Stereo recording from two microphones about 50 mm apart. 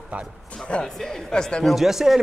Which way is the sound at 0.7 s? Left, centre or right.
Centre.